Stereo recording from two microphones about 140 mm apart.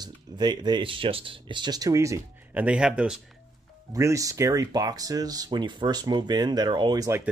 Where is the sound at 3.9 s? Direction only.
25° right (ahead or behind).